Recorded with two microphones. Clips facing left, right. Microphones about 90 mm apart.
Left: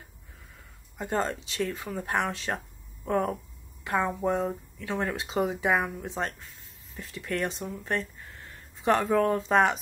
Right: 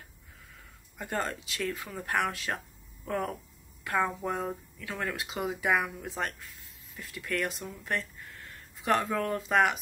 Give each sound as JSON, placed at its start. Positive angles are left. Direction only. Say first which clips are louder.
{"t": 0.9, "sound": "speech", "louder": "left 4 dB", "side_deg": 25}